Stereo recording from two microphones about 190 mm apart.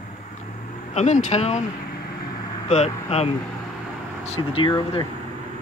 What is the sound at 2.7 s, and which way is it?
Speech, 35° left (ahead or behind).